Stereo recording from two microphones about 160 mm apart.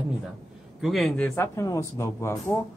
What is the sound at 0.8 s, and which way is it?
A man's voice, centre (ahead or behind).